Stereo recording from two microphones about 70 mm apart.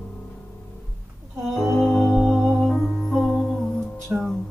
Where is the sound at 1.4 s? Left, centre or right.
Centre.